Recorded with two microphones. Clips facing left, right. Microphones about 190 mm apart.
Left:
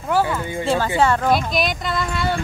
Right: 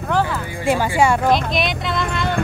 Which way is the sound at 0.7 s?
10° right (ahead or behind).